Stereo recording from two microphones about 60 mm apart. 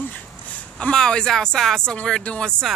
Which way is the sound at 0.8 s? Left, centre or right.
Centre.